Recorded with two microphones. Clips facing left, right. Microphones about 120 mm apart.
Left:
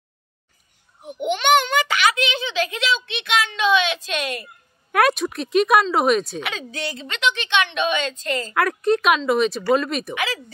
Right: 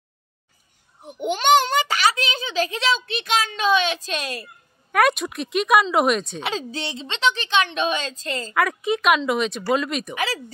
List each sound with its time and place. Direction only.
1.2 s a sound: 40° right (ahead or behind)
4.9 s speech: centre (ahead or behind)
6.4 s a woman's voice: 30° right (ahead or behind)
8.5 s speech: centre (ahead or behind)